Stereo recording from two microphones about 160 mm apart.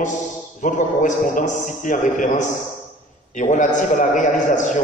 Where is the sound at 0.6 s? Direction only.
55° left (ahead or behind).